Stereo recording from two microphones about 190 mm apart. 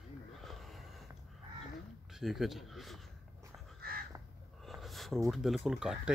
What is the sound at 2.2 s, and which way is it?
Speech, centre (ahead or behind).